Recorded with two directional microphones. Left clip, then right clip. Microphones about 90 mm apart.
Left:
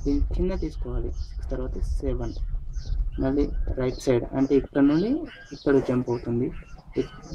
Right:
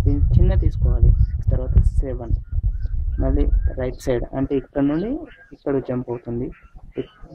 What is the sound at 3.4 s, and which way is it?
Speech, 20° left (ahead or behind).